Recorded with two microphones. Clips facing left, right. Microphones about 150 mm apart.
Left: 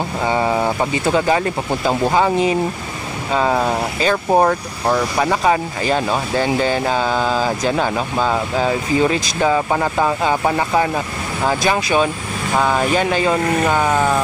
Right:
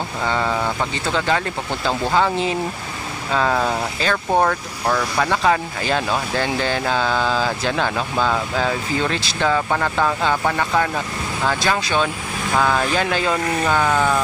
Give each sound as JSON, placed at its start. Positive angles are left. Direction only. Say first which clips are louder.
{"t": 0.3, "sound": "speech", "louder": "left 4 dB", "side_deg": 20}
{"t": 1.0, "sound": "speech", "louder": "left 5 dB", "side_deg": 10}